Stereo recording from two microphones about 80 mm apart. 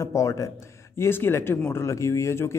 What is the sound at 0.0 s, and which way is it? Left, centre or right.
A man's voice, left.